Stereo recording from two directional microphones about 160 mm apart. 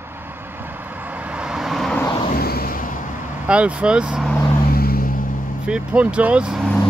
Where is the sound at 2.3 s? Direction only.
70° left (ahead or behind).